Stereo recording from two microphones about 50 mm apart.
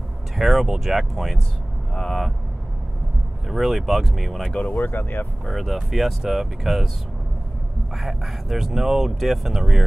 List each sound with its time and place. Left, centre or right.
0.4 s speech: centre
2.0 s speech: centre
3.4 s speech: centre
4.7 s speech: left
5.4 s speech: centre
7.9 s speech: centre